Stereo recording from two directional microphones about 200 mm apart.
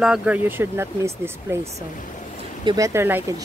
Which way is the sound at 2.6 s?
20° right (ahead or behind).